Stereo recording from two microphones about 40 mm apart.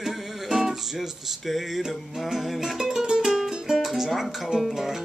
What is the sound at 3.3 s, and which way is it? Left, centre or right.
Music, centre.